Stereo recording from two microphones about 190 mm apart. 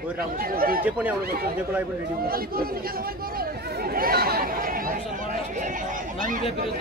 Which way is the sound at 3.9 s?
50° right (ahead or behind).